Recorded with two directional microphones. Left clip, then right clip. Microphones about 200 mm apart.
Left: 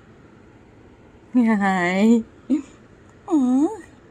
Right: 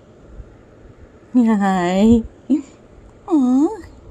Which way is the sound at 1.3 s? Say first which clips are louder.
Right 3 dB; 10° right (ahead or behind).